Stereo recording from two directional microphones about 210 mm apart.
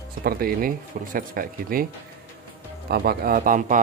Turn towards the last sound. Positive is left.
turn(degrees=-40)  # may be behind; listen again after turning